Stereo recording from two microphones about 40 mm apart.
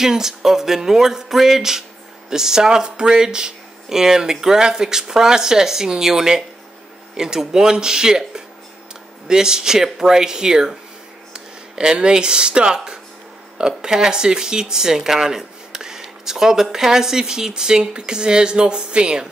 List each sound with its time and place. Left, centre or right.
0.0 s music: centre
9.3 s music: centre
11.3 s speech: centre
13.6 s music: centre